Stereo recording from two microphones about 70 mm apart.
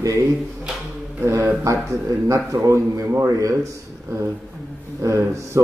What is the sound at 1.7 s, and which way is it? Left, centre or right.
A man's voice, right.